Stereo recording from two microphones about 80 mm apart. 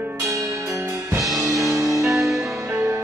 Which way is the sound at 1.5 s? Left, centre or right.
Right.